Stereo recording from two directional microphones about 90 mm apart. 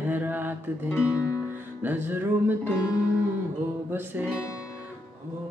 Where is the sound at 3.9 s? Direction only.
20° right (ahead or behind).